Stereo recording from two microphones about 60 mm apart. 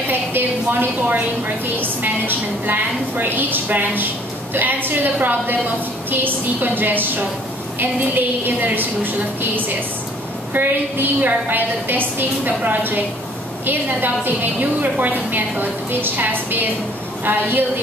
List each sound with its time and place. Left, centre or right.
0.1 s a woman's voice: right